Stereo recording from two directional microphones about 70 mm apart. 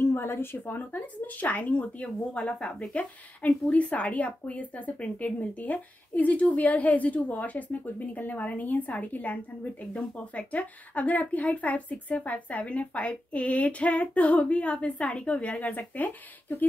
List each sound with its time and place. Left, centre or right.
0.0 s speech: left